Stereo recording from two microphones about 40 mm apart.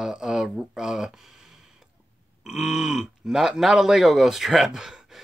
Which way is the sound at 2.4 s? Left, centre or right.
Centre.